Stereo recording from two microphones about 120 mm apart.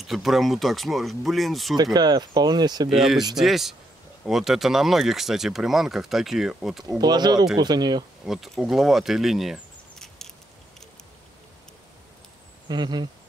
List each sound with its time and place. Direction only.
0.0 s speech: centre (ahead or behind)
2.0 s speech: 35° right (ahead or behind)
2.9 s speech: centre (ahead or behind)
7.0 s speech: 35° right (ahead or behind)
8.3 s speech: centre (ahead or behind)
12.6 s speech: 35° right (ahead or behind)